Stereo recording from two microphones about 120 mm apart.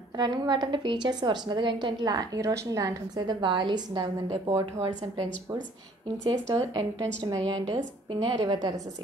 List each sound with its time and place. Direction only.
0.2 s a woman's voice: 40° right (ahead or behind)
6.5 s a woman's voice: 35° right (ahead or behind)